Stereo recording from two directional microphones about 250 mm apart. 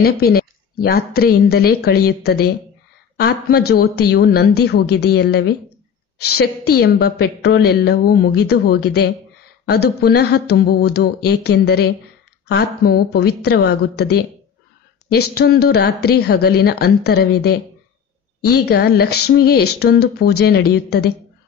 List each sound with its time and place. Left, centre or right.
0.0 s a woman's voice: left
6.7 s a woman's voice: left